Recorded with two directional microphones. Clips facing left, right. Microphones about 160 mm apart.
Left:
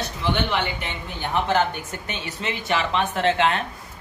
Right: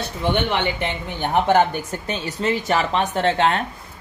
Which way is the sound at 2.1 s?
40° right (ahead or behind).